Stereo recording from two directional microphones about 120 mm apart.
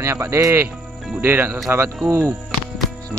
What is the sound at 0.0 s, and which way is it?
Speech, 25° right (ahead or behind).